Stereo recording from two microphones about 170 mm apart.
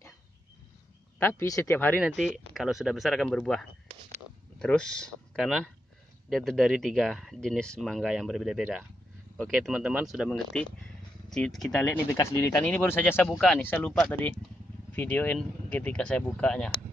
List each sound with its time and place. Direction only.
1.2 s speech: 15° left (ahead or behind)
2.0 s speech: 5° right (ahead or behind)
11.8 s speech: 15° left (ahead or behind)